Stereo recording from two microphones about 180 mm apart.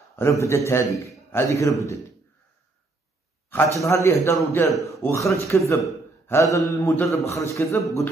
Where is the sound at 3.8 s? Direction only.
15° left (ahead or behind).